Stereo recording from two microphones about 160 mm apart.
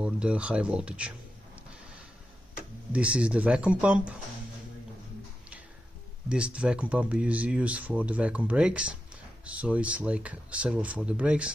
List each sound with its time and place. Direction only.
0.0 s speech: 5° right (ahead or behind)
2.9 s speech: 5° right (ahead or behind)
6.2 s speech: 5° right (ahead or behind)